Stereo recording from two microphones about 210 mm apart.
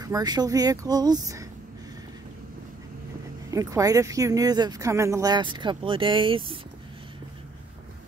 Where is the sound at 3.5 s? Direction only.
15° right (ahead or behind).